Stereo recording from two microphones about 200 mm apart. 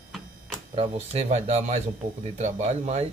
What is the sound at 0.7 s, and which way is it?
Speech, 30° right (ahead or behind).